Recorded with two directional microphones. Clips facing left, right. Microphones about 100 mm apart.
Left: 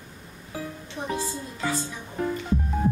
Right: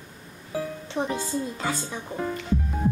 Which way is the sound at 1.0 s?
70° right (ahead or behind).